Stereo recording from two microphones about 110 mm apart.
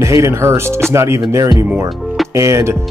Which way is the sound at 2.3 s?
25° right (ahead or behind).